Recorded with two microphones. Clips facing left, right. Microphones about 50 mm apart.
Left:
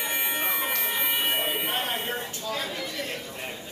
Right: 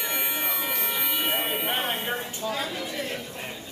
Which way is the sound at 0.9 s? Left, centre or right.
Left.